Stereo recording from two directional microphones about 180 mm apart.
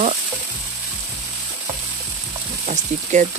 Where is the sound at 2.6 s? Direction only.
40° right (ahead or behind).